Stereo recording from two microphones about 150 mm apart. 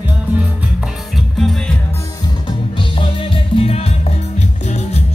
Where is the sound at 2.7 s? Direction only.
35° left (ahead or behind).